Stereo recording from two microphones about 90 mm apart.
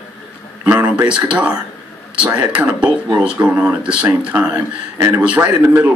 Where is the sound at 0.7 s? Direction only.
15° right (ahead or behind).